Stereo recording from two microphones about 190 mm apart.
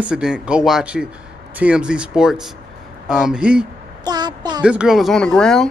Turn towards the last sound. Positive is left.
turn(degrees=5)  # may be behind; listen again after turning